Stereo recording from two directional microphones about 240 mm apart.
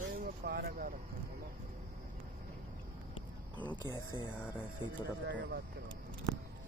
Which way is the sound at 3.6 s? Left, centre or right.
Centre.